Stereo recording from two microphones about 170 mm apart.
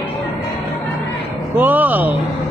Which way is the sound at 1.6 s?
10° right (ahead or behind).